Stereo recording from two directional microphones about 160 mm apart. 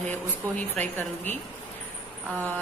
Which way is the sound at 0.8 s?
10° left (ahead or behind).